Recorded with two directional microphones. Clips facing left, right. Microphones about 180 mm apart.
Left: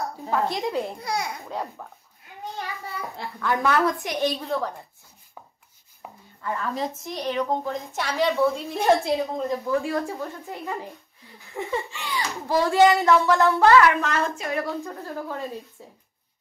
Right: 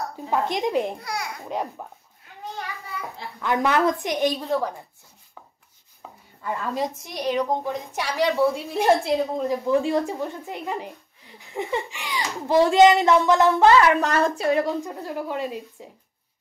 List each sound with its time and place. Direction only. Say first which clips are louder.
0.3 s a child's voice: right 2 dB; 15° right (ahead or behind)
1.0 s speech: left 3 dB; 20° left (ahead or behind)
1.5 s a child's voice: right 3 dB; 20° right (ahead or behind)
3.3 s a child's voice: right 1 dB; 20° right (ahead or behind)
6.0 s chopping: left 1 dB; 15° left (ahead or behind)
6.4 s a child's voice: right 1 dB; 15° right (ahead or behind)
8.8 s a woman's voice: right 1 dB; centre (ahead or behind)
9.5 s a child's voice: right 5 dB; 20° right (ahead or behind)
13.9 s a woman's voice: right 4 dB; 35° right (ahead or behind)
14.6 s a child's voice: right 4 dB; 15° right (ahead or behind)